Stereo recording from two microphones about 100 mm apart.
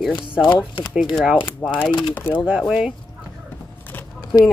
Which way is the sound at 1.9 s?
55° left (ahead or behind).